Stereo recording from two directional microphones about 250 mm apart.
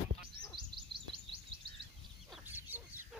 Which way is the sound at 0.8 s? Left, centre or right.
Centre.